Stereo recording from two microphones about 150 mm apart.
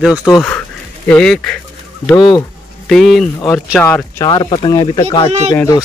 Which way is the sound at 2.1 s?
30° left (ahead or behind).